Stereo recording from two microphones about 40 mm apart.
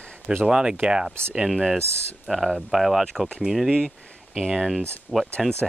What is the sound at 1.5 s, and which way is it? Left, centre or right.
Speech, centre.